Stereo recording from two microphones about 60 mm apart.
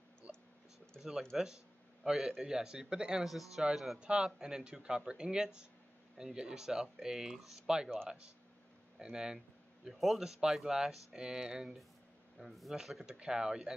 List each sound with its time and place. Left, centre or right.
0.3 s a sound: centre
1.3 s speech: centre
8.9 s speech: centre